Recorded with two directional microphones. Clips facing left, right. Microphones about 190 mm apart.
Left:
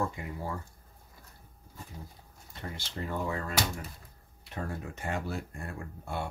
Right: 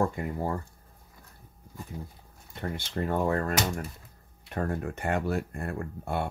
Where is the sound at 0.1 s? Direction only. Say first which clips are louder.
Right 7 dB; 50° right (ahead or behind).